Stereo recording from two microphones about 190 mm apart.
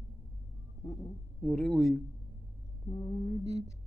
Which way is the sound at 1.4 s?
Centre (ahead or behind).